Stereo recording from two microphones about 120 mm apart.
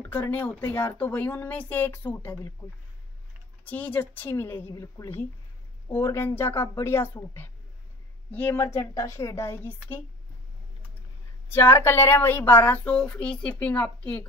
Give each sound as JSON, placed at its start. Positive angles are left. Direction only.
{"t": 0.1, "sound": "speech", "side_deg": 15}
{"t": 3.6, "sound": "speech", "side_deg": 15}
{"t": 11.5, "sound": "speech", "side_deg": 20}